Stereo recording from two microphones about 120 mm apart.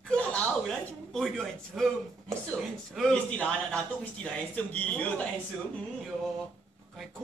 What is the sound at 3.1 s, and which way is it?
Speech, 10° left (ahead or behind).